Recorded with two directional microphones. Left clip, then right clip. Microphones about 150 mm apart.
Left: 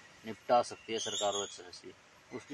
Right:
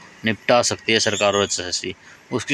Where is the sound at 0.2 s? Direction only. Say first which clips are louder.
Right 12 dB; 20° right (ahead or behind).